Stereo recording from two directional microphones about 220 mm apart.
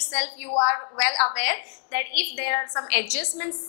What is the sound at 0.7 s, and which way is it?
A woman's voice, 10° left (ahead or behind).